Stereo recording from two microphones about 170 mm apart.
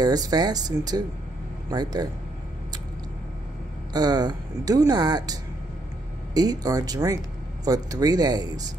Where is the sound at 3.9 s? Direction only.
25° right (ahead or behind).